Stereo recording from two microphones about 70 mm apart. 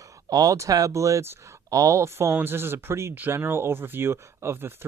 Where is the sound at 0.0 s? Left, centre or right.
Right.